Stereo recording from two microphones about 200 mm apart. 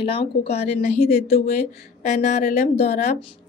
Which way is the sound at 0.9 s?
50° left (ahead or behind).